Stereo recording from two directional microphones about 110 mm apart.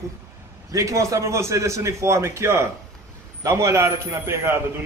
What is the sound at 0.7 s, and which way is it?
A man's voice, 30° right (ahead or behind).